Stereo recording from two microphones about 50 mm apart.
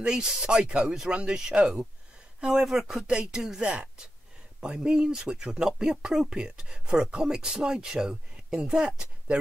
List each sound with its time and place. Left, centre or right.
0.0 s speech: centre